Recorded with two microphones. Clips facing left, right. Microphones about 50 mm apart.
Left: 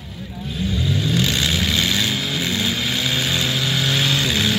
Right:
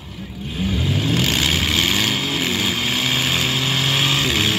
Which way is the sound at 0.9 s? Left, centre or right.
Right.